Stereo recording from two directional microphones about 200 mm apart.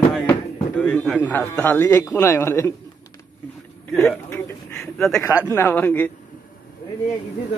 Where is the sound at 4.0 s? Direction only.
5° left (ahead or behind).